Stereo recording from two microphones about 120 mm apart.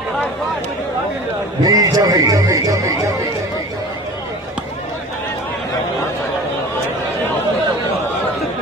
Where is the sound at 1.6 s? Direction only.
30° right (ahead or behind).